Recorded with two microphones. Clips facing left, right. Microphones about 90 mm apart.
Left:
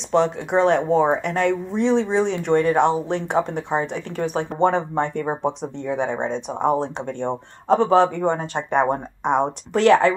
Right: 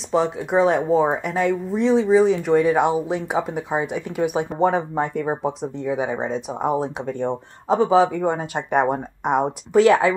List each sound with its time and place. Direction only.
0.1 s speech: 5° right (ahead or behind)